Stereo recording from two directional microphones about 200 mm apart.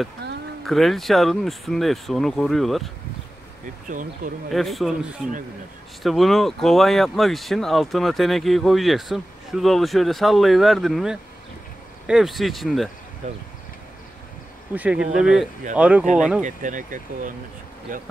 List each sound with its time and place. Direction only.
0.2 s a sound: 55° right (ahead or behind)
0.7 s speech: centre (ahead or behind)
3.9 s speech: 40° right (ahead or behind)
4.5 s speech: centre (ahead or behind)
13.2 s speech: 35° right (ahead or behind)
14.7 s speech: 5° right (ahead or behind)
16.4 s speech: 40° right (ahead or behind)